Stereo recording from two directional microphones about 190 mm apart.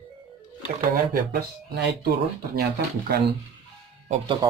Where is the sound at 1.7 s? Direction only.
60° right (ahead or behind).